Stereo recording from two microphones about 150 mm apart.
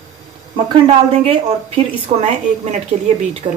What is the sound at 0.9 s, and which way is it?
A woman's voice, 40° right (ahead or behind).